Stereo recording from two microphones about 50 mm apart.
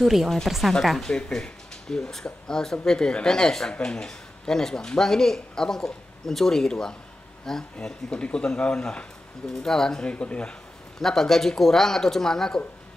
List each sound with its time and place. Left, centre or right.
0.0 s speech: centre
1.0 s a man's voice: centre
11.0 s speech: centre